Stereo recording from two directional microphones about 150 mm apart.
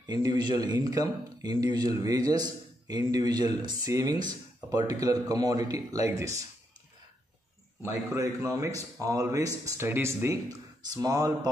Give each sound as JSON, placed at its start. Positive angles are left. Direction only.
{"t": 0.0, "sound": "a man's voice", "side_deg": -25}
{"t": 8.1, "sound": "a man's voice", "side_deg": -20}